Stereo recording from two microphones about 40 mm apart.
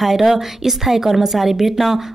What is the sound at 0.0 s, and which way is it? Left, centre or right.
Speech, centre.